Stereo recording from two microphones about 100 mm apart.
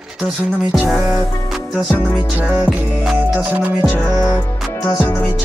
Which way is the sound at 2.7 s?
15° right (ahead or behind).